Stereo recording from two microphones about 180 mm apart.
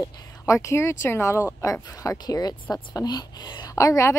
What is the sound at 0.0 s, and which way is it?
Speech, 15° left (ahead or behind).